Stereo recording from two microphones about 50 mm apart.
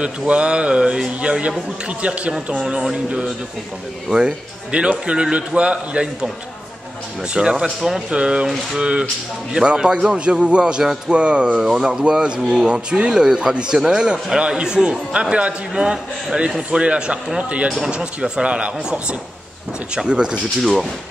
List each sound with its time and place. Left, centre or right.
0.0 s a man's voice: right
4.7 s a man's voice: right
7.3 s a man's voice: centre
11.1 s a man's voice: right